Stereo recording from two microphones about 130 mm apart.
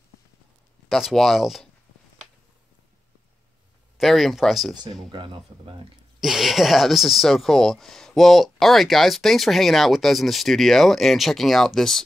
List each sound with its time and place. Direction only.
0.8 s speech: centre (ahead or behind)
4.0 s speech: centre (ahead or behind)
5.1 s speech: 40° right (ahead or behind)
6.2 s speech: centre (ahead or behind)